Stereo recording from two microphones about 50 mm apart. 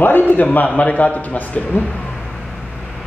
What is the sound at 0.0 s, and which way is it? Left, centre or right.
A man's voice, left.